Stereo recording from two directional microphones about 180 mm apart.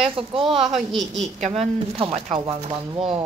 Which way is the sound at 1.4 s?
35° right (ahead or behind).